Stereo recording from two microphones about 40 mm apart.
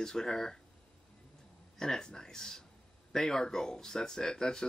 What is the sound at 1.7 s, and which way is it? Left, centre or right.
Speech, centre.